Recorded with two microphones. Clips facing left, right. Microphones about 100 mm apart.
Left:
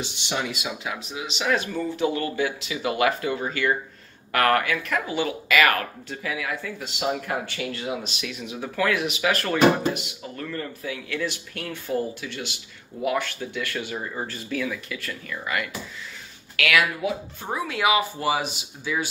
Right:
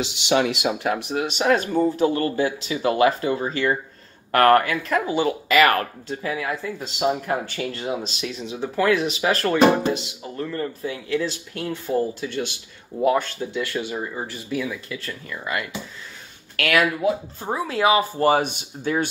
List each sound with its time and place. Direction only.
0.0 s speech: 85° right; by 1.3 s 60° right (ahead or behind)
1.4 s speech: 40° right (ahead or behind); by 15.7 s 25° right (ahead or behind)
16.5 s speech: 45° right (ahead or behind)
18.2 s speech: 50° right (ahead or behind)